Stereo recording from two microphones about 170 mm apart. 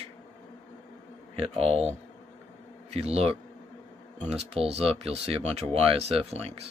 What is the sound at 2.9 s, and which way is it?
Speech, 35° right (ahead or behind).